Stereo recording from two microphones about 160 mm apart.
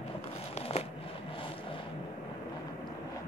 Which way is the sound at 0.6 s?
40° left (ahead or behind).